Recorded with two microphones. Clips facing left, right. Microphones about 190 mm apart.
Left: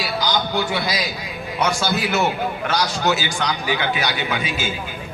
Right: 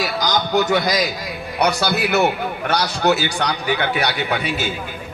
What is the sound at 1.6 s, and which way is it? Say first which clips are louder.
A man's voice: right 2 dB; 65° right (ahead or behind).